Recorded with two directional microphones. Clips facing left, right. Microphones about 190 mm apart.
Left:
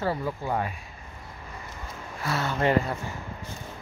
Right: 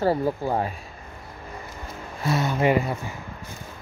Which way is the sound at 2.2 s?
15° right (ahead or behind).